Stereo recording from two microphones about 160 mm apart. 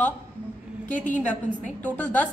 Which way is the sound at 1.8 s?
10° left (ahead or behind).